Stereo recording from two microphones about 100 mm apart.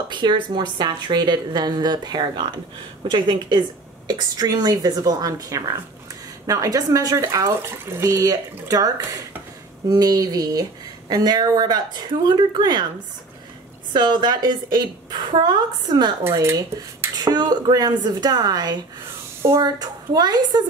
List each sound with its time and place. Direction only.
0.1 s a woman's voice: 50° right (ahead or behind)
13.9 s a woman's voice: 45° right (ahead or behind)
17.2 s a woman's voice: 45° right (ahead or behind)